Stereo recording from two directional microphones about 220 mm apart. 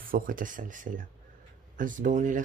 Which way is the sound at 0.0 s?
40° right (ahead or behind).